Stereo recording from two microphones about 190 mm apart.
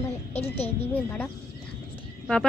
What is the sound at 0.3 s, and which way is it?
Speech, 30° left (ahead or behind).